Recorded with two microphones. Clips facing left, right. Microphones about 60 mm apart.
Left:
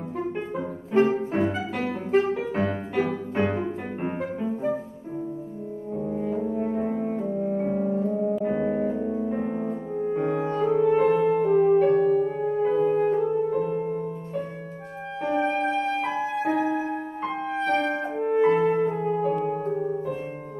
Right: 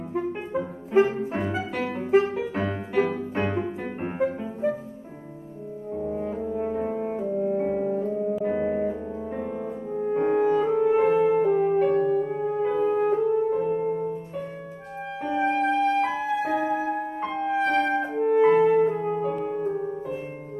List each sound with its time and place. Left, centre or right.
0.1 s music: centre
5.9 s french horn: centre
8.1 s music: centre
13.8 s music: centre